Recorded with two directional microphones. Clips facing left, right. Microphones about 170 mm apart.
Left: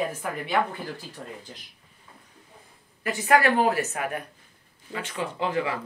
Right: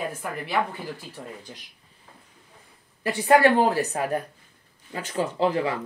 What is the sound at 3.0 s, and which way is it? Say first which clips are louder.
A woman's voice: right 4 dB; 30° right (ahead or behind).